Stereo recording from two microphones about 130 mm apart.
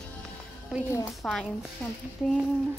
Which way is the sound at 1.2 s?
5° left (ahead or behind).